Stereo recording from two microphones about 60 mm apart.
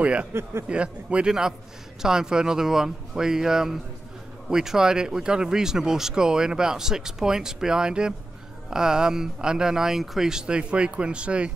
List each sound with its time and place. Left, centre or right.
0.0 s speech: right
0.3 s speech: right
0.7 s speech: centre